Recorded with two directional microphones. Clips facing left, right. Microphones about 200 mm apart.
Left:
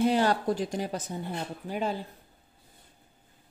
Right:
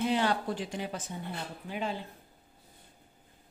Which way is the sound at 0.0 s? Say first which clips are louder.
Left 4 dB; 40° left (ahead or behind).